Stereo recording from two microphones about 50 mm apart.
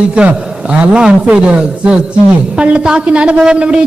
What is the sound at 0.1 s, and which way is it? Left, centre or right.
A man's voice, right.